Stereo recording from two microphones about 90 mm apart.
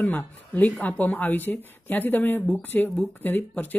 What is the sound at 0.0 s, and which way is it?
Speech, 20° left (ahead or behind).